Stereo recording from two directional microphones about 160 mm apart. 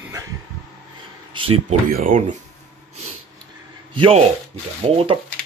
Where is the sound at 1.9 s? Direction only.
60° right (ahead or behind).